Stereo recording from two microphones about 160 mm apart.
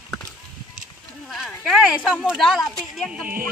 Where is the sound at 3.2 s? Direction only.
65° right (ahead or behind).